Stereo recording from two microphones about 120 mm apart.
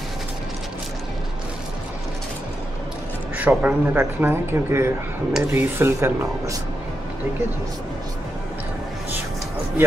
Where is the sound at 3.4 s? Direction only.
15° right (ahead or behind).